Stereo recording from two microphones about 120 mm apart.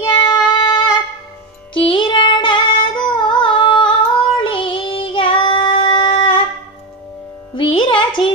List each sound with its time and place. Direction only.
0.0 s child singing: 40° left (ahead or behind)
1.7 s singing: 45° left (ahead or behind)
4.4 s child singing: 45° left (ahead or behind)
7.5 s music: 45° left (ahead or behind)